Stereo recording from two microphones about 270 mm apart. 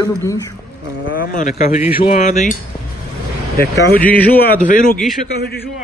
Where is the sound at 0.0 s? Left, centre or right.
Centre.